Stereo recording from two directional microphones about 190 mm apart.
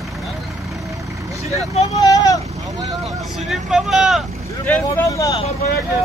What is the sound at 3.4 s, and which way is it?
Vehicle, centre (ahead or behind).